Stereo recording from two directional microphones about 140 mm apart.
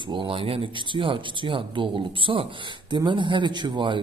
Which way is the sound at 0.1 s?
35° right (ahead or behind).